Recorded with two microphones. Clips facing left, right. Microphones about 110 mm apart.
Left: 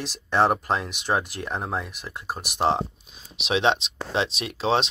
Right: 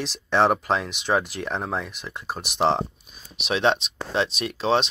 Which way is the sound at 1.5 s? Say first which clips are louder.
Right 1 dB; 5° left (ahead or behind).